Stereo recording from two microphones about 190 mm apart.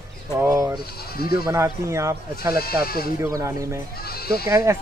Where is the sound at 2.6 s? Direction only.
50° left (ahead or behind).